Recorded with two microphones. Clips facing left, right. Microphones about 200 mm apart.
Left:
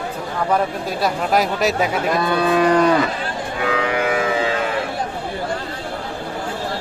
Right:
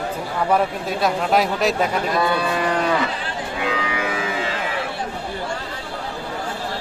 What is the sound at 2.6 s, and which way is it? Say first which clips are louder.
Moo: left 9 dB; 40° left (ahead or behind).